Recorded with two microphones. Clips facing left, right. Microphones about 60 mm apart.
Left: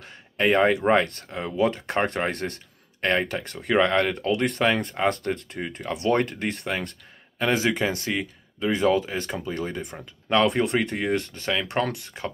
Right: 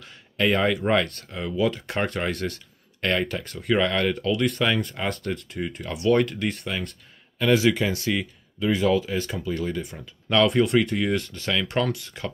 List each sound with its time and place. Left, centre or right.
0.0 s speech: left
7.3 s speech: left
10.2 s speech: left
10.5 s speech: left